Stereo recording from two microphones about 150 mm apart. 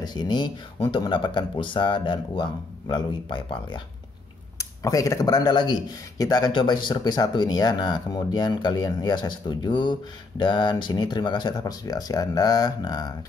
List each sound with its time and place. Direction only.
0.0 s speech: 30° left (ahead or behind)